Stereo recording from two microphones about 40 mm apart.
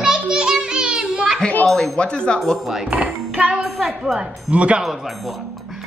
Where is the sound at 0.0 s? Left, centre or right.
Centre.